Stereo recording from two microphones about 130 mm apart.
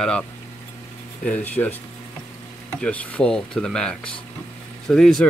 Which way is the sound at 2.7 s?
10° left (ahead or behind).